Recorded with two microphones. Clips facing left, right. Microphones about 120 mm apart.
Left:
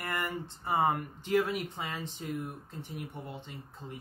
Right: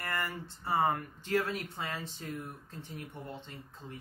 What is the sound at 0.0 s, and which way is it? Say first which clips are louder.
Speech: left 2 dB; 20° left (ahead or behind).